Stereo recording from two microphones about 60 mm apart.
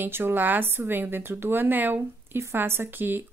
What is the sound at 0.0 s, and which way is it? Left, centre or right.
Speech, right.